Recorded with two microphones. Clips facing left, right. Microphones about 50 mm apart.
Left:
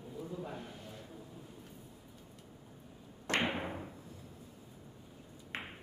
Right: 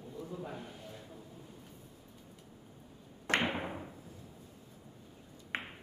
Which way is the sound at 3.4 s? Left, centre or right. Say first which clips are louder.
Right 1 dB; centre.